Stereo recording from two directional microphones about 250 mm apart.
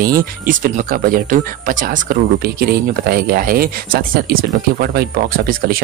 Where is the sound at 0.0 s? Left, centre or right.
Right.